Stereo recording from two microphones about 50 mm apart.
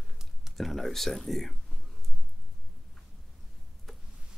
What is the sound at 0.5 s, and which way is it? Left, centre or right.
Speech, centre.